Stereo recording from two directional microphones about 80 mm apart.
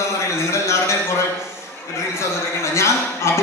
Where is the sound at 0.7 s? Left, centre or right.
Left.